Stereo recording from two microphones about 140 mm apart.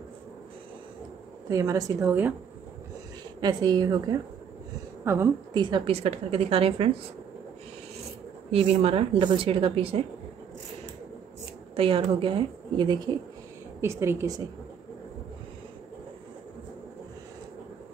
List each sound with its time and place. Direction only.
1.5 s a woman's voice: 20° right (ahead or behind)
3.3 s a woman's voice: 30° right (ahead or behind)
5.0 s a woman's voice: 20° right (ahead or behind)
5.5 s a woman's voice: 30° right (ahead or behind)
8.5 s a woman's voice: 45° right (ahead or behind)
11.7 s a woman's voice: 40° right (ahead or behind)
13.7 s a woman's voice: 20° right (ahead or behind)